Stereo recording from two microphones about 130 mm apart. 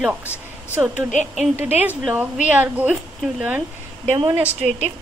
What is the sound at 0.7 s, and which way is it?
A woman's voice, 10° right (ahead or behind).